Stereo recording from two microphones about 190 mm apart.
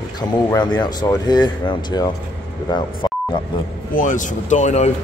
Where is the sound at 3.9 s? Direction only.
40° left (ahead or behind).